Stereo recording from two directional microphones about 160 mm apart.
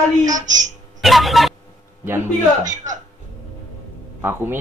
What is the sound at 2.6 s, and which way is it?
Speech, 50° right (ahead or behind).